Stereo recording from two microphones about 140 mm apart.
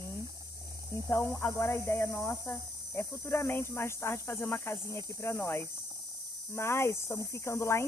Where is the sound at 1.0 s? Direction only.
20° left (ahead or behind).